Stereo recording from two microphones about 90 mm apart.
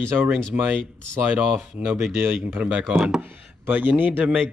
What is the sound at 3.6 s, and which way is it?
Speech, 20° right (ahead or behind).